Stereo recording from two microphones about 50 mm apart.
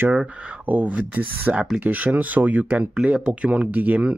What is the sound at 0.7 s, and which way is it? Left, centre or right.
Speech, right.